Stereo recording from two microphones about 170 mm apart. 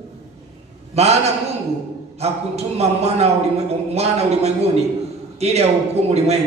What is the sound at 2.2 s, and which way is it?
A man's voice, 40° right (ahead or behind).